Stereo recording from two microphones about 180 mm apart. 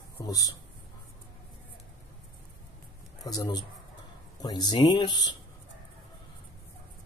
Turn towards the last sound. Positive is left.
turn(degrees=25)  # may be behind; listen again after turning